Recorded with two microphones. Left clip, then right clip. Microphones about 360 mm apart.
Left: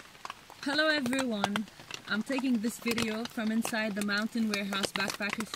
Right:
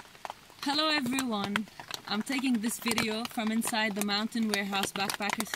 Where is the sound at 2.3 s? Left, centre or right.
Right.